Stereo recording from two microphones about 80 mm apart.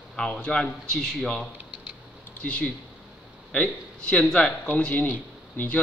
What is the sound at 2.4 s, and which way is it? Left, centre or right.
A man's voice, centre.